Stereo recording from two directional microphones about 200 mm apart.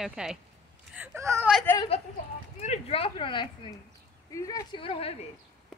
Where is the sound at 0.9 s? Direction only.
15° right (ahead or behind).